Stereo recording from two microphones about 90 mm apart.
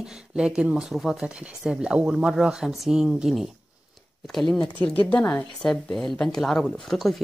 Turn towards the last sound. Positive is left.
turn(degrees=5)  # may be behind; listen again after turning